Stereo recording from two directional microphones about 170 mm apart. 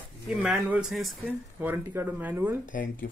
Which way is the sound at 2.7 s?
55° left (ahead or behind).